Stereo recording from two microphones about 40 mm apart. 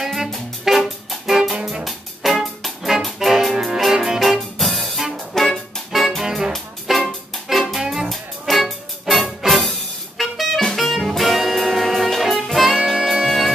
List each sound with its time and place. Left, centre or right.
0.0 s music: centre
1.6 s music: right
1.9 s music: centre
4.2 s music: centre
6.2 s music: centre
6.5 s music: centre
7.8 s music: centre
8.1 s music: centre